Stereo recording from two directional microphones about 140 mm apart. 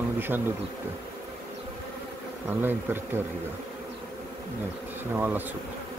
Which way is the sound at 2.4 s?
15° right (ahead or behind).